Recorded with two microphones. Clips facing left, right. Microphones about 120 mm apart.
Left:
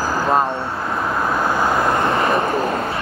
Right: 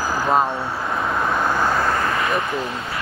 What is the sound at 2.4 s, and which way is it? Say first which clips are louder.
Speech: left 6 dB; 50° left (ahead or behind).